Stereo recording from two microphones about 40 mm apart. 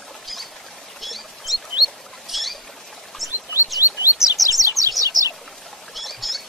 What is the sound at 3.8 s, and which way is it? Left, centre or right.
Chirp, right.